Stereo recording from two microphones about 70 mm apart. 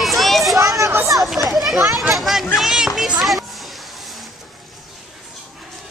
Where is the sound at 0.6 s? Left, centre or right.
Right.